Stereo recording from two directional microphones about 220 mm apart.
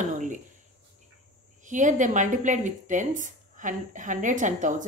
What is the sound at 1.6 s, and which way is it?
A woman's voice, 35° right (ahead or behind).